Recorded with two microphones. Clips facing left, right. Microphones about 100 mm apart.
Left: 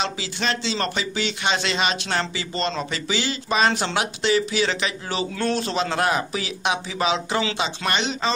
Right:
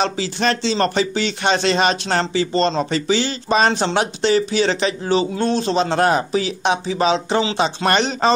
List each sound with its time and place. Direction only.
0.0 s a man's voice: 40° right (ahead or behind)
7.6 s speech: 40° right (ahead or behind)